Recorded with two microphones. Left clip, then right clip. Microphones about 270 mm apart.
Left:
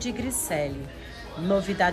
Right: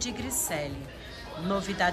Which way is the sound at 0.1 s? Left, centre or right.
Centre.